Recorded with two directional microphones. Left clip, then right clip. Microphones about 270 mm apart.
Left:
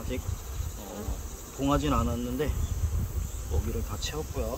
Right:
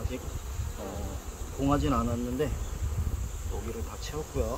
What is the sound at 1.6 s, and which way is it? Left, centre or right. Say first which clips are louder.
Speech: left 1 dB; centre.